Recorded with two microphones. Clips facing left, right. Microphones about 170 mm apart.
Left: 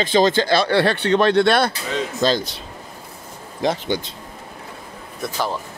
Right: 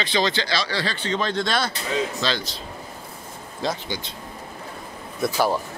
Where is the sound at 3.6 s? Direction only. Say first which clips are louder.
Left 6 dB; 15° left (ahead or behind).